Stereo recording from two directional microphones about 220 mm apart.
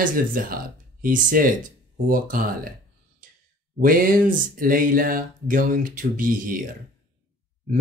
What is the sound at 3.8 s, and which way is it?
Speech, 40° right (ahead or behind).